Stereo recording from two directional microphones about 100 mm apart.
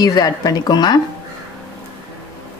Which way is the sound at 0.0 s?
40° left (ahead or behind).